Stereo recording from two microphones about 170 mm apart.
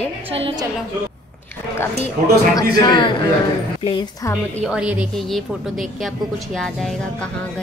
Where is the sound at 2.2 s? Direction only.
55° right (ahead or behind).